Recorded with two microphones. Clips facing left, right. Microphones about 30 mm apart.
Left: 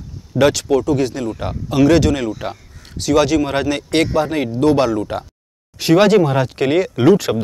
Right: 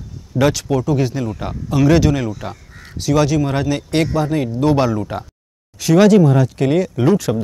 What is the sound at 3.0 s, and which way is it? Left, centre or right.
Speech, left.